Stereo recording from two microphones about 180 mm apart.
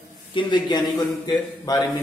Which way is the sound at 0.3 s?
25° left (ahead or behind).